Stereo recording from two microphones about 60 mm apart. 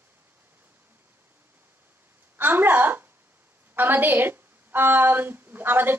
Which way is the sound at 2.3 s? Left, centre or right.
Right.